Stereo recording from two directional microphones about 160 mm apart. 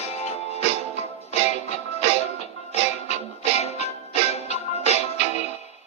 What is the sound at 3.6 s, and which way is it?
Music, 40° left (ahead or behind).